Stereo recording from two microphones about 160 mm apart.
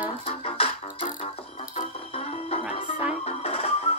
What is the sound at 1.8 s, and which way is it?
Music, 40° left (ahead or behind).